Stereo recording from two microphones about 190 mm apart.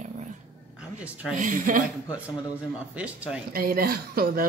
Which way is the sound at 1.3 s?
45° right (ahead or behind).